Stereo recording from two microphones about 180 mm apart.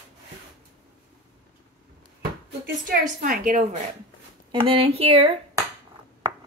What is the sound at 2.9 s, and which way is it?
Speech, 50° right (ahead or behind).